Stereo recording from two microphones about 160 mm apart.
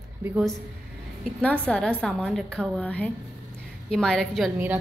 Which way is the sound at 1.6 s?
5° left (ahead or behind).